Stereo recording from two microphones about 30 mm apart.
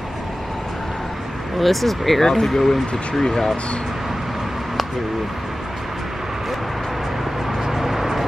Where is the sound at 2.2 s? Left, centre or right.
Centre.